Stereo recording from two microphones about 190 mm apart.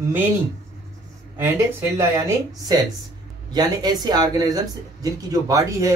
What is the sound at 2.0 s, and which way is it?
Speech, 20° right (ahead or behind).